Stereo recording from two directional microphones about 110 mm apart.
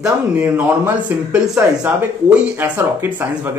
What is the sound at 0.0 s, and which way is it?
A man's voice, 15° right (ahead or behind).